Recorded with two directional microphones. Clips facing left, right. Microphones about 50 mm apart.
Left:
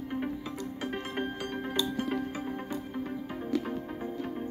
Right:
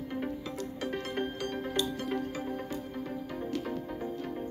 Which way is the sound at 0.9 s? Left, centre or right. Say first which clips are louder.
Right 1 dB; centre.